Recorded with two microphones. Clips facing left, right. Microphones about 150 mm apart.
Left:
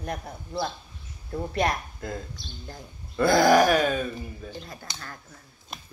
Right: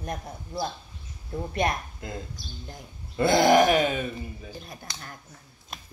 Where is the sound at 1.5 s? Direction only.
20° right (ahead or behind).